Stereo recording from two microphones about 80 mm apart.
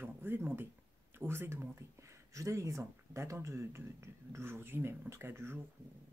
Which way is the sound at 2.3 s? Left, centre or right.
Right.